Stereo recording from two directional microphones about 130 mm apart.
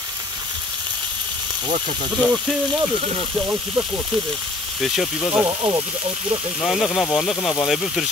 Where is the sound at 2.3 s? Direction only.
Centre (ahead or behind).